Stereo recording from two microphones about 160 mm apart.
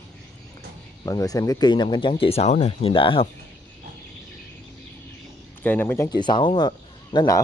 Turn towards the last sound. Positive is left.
turn(degrees=25)  # may be behind; listen again after turning